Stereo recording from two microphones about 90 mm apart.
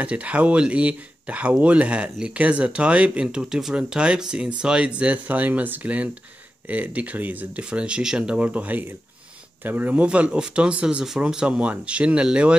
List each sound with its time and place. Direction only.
0.0 s speech: 15° right (ahead or behind)